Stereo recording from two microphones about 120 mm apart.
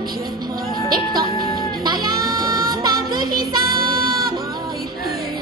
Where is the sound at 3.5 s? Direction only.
35° right (ahead or behind).